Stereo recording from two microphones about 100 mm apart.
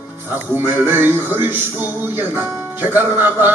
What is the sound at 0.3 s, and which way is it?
Music, 20° right (ahead or behind).